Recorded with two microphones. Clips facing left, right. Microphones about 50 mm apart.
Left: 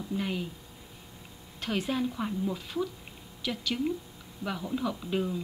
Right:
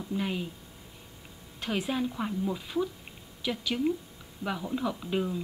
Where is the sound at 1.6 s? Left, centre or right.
Centre.